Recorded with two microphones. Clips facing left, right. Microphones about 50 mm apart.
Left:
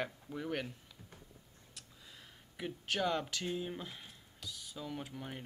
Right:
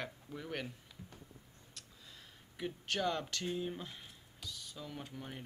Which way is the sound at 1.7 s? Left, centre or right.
Centre.